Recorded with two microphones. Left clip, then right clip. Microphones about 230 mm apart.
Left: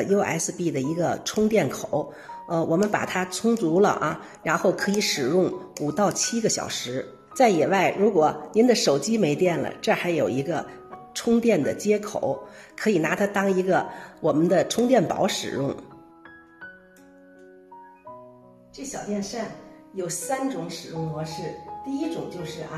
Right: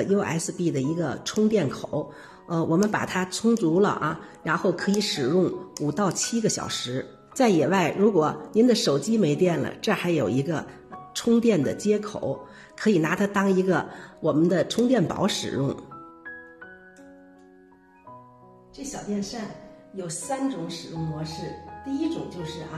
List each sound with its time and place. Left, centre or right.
0.0 s speech: centre
18.8 s speech: centre